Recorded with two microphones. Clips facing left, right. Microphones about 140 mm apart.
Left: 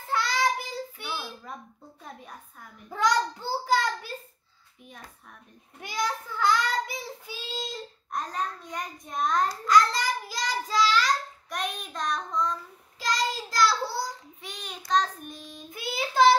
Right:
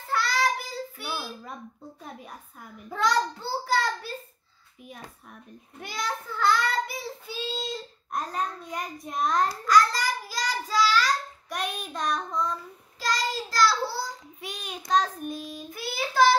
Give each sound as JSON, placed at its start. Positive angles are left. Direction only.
{"t": 0.1, "sound": "child singing", "side_deg": 20}
{"t": 2.9, "sound": "a child's voice", "side_deg": 15}
{"t": 5.8, "sound": "child singing", "side_deg": 15}
{"t": 8.1, "sound": "a child's voice", "side_deg": -5}
{"t": 9.7, "sound": "child singing", "side_deg": 25}
{"t": 11.4, "sound": "child singing", "side_deg": 0}
{"t": 13.0, "sound": "child singing", "side_deg": 20}
{"t": 14.4, "sound": "child singing", "side_deg": -10}
{"t": 15.7, "sound": "child singing", "side_deg": 20}